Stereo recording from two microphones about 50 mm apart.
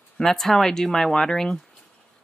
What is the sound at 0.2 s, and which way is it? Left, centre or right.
Speech, centre.